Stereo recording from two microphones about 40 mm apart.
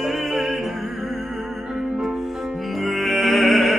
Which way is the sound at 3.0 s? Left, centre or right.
Centre.